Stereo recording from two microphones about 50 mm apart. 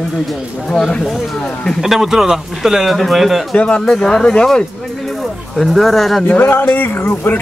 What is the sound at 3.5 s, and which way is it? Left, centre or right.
Speech, centre.